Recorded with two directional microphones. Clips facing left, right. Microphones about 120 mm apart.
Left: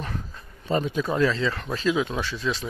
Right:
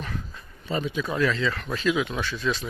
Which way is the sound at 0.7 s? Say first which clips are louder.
Left 3 dB; 45° left (ahead or behind).